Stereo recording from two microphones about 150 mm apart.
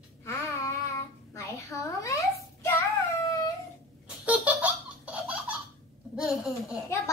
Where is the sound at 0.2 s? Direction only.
20° left (ahead or behind).